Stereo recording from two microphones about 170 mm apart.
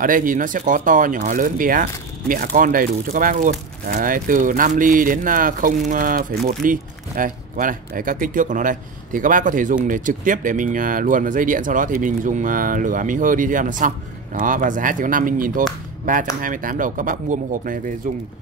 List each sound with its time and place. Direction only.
0.0 s speech: 55° right (ahead or behind)